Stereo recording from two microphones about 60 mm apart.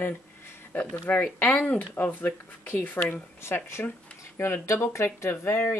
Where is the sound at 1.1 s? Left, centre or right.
Left.